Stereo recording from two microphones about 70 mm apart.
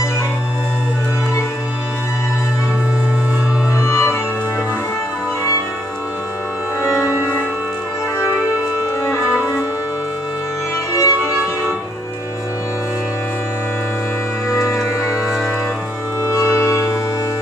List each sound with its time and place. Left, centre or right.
3.7 s music: left
7.0 s music: right
10.9 s music: left
14.5 s music: left
16.3 s music: left